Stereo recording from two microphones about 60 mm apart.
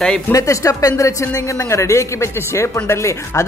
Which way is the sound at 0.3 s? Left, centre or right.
Left.